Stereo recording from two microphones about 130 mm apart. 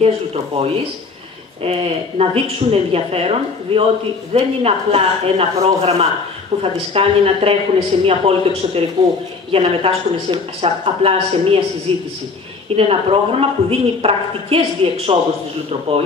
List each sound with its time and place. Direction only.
0.0 s a woman's voice: 50° right (ahead or behind)